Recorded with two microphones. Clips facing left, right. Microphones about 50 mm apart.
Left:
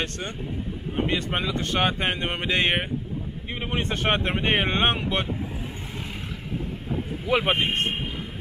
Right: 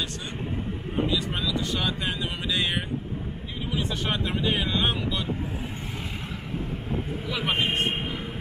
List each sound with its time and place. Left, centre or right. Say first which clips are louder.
0.9 s speech: left 1 dB; left
7.2 s speech: left 5 dB; left